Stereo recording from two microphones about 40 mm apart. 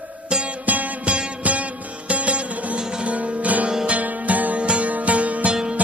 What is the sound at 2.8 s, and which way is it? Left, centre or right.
Music, right.